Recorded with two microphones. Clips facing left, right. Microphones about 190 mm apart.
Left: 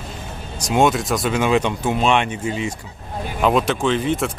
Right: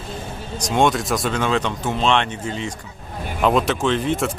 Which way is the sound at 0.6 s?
5° left (ahead or behind).